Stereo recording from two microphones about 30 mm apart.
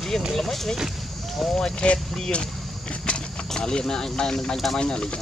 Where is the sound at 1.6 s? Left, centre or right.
Left.